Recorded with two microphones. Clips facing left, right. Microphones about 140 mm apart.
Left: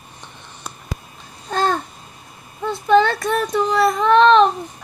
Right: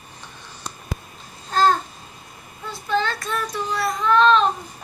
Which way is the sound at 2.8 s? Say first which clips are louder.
Left 9 dB; 65° left (ahead or behind).